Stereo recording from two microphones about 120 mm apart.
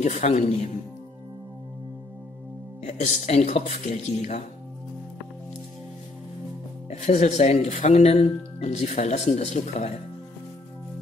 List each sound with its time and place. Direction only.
0.0 s speech: 75° left (ahead or behind)
2.8 s speech: 70° left (ahead or behind)
6.9 s speech: 70° left (ahead or behind)